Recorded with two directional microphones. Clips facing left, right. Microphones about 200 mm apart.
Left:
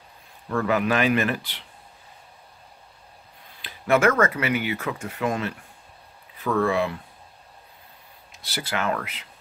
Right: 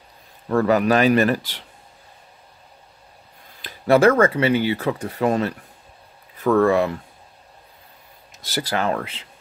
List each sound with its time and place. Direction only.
0.5 s speech: 40° right (ahead or behind)
3.6 s speech: 35° right (ahead or behind)
8.3 s speech: 45° right (ahead or behind)